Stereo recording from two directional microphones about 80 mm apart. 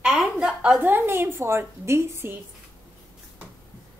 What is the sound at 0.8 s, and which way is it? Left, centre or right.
Speech, right.